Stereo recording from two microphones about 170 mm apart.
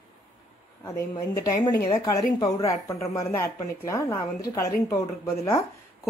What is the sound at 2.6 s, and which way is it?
A woman's voice, 20° left (ahead or behind).